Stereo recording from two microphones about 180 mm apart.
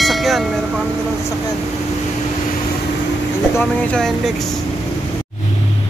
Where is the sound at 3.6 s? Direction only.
5° left (ahead or behind).